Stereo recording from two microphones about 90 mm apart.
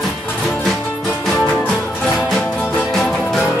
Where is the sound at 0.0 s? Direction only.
10° left (ahead or behind).